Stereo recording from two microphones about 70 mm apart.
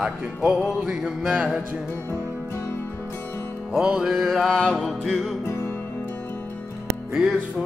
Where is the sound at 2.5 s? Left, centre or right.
Left.